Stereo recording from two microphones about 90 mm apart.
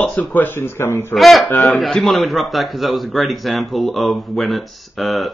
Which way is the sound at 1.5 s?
20° left (ahead or behind).